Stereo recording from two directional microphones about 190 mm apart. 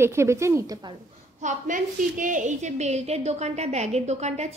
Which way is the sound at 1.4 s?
45° right (ahead or behind).